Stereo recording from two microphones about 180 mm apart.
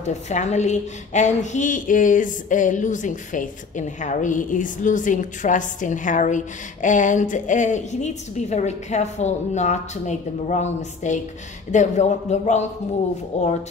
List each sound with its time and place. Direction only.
0.0 s a woman's voice: 40° left (ahead or behind)